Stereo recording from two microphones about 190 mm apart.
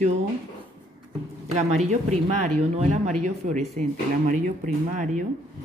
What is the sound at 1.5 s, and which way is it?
Speech, 35° right (ahead or behind).